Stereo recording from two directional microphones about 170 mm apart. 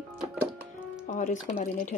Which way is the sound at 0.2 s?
Centre (ahead or behind).